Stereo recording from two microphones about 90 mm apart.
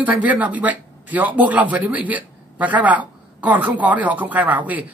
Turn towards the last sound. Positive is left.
turn(degrees=-15)  # may be behind; listen again after turning